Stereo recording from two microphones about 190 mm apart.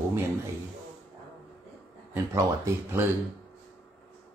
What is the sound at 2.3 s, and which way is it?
Speech, 15° right (ahead or behind).